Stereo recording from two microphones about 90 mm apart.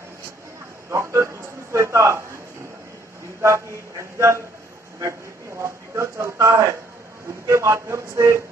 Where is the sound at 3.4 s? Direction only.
35° right (ahead or behind).